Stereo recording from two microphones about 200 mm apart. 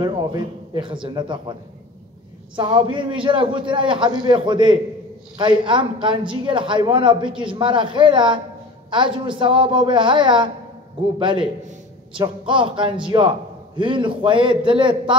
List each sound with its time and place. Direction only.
0.0 s a man's voice: 25° right (ahead or behind)